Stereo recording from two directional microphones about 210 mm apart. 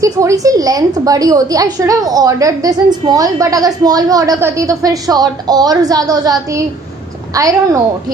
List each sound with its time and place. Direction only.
0.0 s a woman's voice: 15° right (ahead or behind)